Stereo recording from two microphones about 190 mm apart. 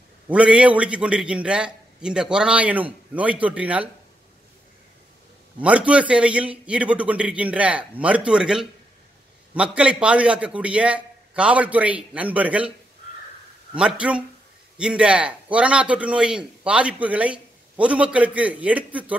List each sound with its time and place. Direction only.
0.3 s a man's voice: 5° right (ahead or behind)
5.6 s a man's voice: 5° right (ahead or behind)
13.7 s a man's voice: 5° right (ahead or behind)